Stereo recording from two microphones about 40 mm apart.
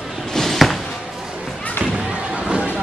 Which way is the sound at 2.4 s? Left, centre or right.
Right.